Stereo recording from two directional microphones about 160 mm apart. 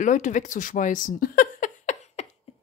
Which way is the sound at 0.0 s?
50° left (ahead or behind).